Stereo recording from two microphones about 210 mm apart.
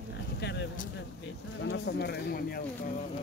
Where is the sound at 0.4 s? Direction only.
55° left (ahead or behind).